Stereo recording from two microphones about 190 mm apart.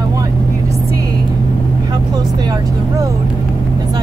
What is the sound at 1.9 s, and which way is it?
Speech, 20° right (ahead or behind).